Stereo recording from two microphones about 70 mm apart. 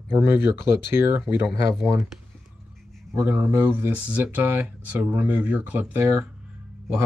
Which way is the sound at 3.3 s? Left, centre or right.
Right.